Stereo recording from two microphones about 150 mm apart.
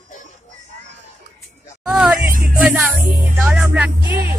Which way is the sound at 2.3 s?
65° right (ahead or behind).